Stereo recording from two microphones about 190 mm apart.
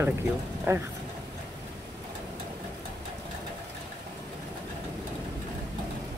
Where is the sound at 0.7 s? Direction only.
10° right (ahead or behind).